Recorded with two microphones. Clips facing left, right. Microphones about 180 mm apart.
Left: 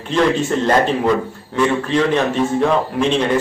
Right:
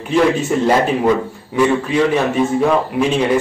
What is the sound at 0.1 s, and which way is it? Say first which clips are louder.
A man's voice: right 2 dB; 10° right (ahead or behind).